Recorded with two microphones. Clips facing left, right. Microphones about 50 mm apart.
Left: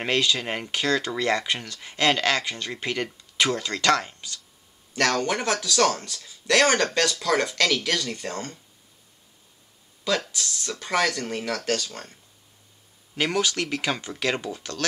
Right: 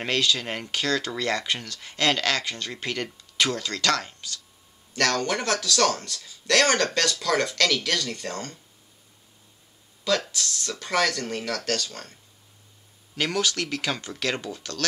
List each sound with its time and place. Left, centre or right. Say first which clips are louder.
0.0 s speech: left 1 dB; centre
10.3 s speech: even; centre